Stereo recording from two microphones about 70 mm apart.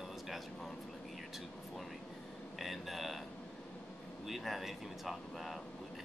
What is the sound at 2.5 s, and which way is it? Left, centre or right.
Speech, centre.